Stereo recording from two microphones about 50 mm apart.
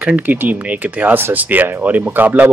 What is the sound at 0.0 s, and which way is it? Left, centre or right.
Speech, right.